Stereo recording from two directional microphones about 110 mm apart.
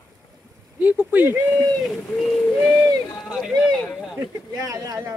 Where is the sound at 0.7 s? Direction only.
15° right (ahead or behind).